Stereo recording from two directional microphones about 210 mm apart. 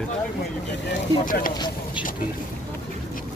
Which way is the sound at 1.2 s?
40° left (ahead or behind).